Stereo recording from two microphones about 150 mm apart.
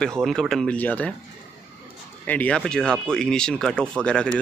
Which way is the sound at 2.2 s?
10° left (ahead or behind).